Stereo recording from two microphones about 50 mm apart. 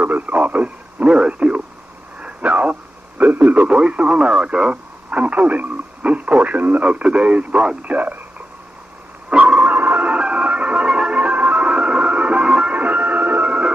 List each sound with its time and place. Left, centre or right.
0.0 s a man's voice: right
1.0 s speech: centre
2.2 s a sound: right
3.5 s speech: right
9.3 s music: right
12.7 s music: right
13.5 s music: right